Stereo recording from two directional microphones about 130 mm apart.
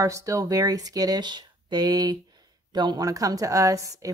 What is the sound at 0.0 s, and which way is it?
Speech, 25° right (ahead or behind).